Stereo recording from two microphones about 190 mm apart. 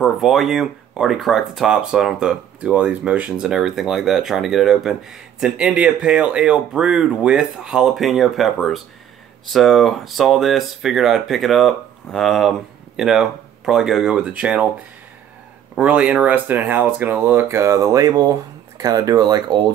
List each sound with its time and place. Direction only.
0.0 s speech: centre (ahead or behind)
15.7 s speech: 5° right (ahead or behind)